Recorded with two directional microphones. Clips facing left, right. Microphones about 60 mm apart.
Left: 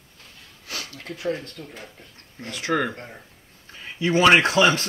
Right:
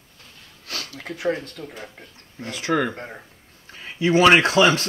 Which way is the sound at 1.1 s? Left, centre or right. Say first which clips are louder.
Right 3 dB; right.